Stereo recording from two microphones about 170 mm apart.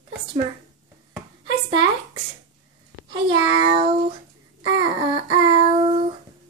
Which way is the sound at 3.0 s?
30° right (ahead or behind).